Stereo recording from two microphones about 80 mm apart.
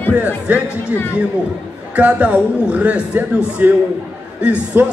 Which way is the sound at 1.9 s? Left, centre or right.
Centre.